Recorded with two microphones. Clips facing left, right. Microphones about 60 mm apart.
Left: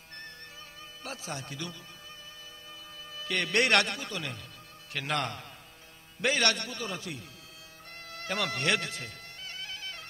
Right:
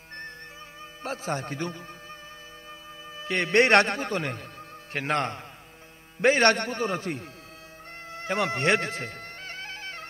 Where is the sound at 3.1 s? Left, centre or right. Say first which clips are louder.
Right 6 dB; right.